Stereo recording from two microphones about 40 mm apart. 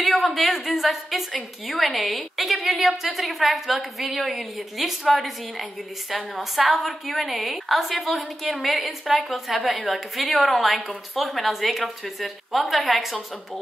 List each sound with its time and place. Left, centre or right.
0.0 s a woman's voice: centre